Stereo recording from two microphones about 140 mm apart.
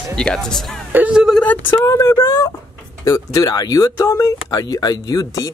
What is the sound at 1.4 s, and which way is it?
Speech, 15° left (ahead or behind).